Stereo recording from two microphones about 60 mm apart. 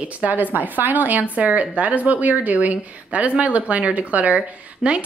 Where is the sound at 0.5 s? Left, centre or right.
Right.